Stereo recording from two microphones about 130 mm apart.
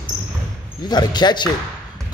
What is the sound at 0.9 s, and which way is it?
Speech, 35° left (ahead or behind).